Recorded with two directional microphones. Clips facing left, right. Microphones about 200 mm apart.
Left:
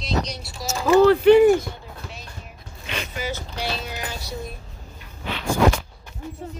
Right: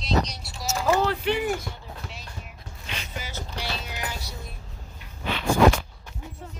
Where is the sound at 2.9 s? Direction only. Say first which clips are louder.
Left 8 dB; 70° left (ahead or behind).